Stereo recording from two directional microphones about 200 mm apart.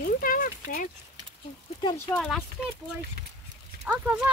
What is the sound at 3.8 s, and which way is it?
Speech, 5° right (ahead or behind).